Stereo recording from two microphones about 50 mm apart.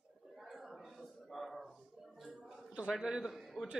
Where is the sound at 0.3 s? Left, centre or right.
Centre.